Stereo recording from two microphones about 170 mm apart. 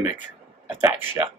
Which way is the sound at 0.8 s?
10° right (ahead or behind).